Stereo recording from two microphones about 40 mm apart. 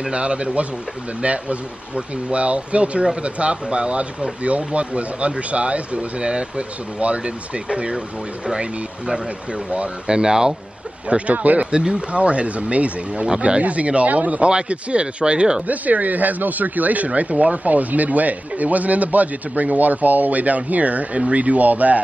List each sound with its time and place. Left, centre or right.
0.1 s speech: right
11.1 s speech: right
11.3 s speech: right
11.7 s speech: right
13.6 s speech: right
15.6 s speech: right